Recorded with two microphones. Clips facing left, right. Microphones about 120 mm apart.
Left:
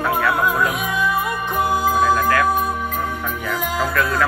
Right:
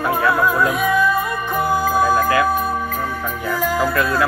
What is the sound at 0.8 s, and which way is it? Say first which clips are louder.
Music: right 5 dB; 20° left (ahead or behind).